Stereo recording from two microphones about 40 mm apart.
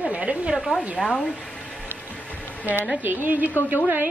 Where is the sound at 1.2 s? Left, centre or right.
Left.